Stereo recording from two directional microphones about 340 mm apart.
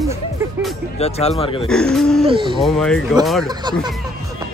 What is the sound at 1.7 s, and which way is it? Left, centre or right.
Speech, centre.